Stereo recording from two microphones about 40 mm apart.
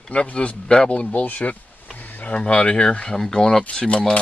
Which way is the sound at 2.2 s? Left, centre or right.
Left.